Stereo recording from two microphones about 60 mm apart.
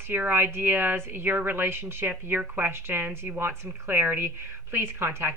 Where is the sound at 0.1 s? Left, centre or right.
Right.